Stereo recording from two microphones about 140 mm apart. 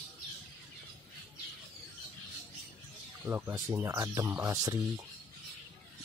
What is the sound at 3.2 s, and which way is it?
Speech, 15° right (ahead or behind).